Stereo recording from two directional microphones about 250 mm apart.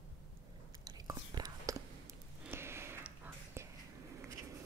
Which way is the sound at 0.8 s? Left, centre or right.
Centre.